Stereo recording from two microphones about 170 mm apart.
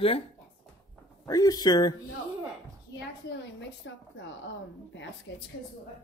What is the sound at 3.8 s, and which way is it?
Speech, 90° left.